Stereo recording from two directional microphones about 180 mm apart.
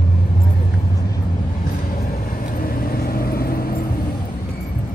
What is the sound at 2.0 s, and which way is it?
Vehicle, 50° left (ahead or behind).